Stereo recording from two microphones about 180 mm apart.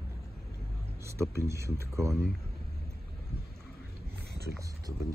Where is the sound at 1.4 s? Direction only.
15° right (ahead or behind).